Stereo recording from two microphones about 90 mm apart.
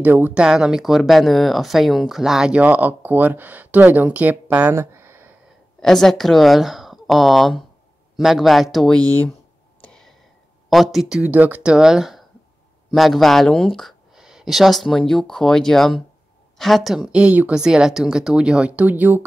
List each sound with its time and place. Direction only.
0.0 s speech: 20° right (ahead or behind)
0.4 s speech: 5° right (ahead or behind); by 5.3 s 25° right (ahead or behind)
5.8 s speech: 5° left (ahead or behind)
9.8 s a sound: 10° left (ahead or behind)
10.7 s speech: centre (ahead or behind); by 19.2 s 20° right (ahead or behind)